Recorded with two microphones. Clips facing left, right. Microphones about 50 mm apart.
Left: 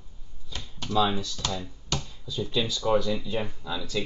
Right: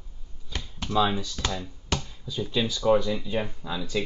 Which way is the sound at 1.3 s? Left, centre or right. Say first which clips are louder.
Right 1 dB; centre.